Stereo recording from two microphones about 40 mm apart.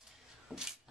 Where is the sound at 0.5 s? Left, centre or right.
Right.